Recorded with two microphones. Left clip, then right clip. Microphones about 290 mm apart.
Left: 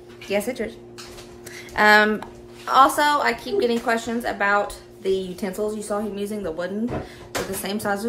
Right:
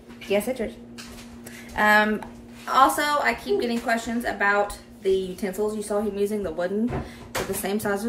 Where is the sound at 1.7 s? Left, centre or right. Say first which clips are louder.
Left 4 dB; centre.